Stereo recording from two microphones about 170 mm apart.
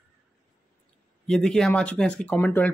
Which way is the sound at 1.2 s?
5° left (ahead or behind).